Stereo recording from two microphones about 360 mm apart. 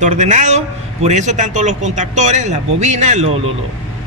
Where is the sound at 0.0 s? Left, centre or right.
Centre.